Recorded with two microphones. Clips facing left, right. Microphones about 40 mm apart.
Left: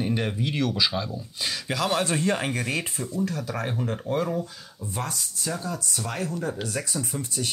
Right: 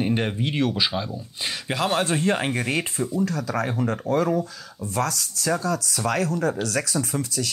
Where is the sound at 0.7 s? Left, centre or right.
Centre.